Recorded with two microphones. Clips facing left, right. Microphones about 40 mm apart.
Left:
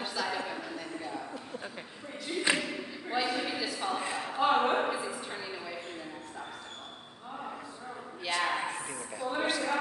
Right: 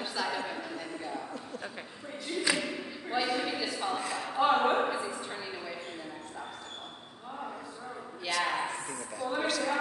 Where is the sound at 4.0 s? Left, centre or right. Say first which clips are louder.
Even; left.